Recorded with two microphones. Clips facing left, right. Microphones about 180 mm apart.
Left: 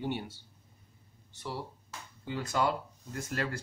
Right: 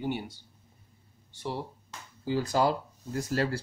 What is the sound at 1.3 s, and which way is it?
Speech, 25° right (ahead or behind).